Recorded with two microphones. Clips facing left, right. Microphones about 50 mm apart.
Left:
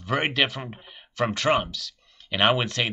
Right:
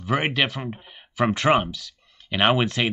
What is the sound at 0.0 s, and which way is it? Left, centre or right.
Speech, centre.